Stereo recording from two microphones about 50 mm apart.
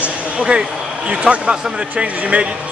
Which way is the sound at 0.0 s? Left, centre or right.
Centre.